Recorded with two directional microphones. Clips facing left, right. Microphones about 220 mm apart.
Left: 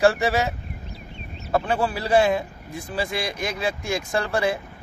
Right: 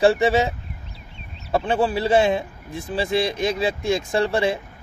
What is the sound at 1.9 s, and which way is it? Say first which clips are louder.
Speech: even; 25° right (ahead or behind).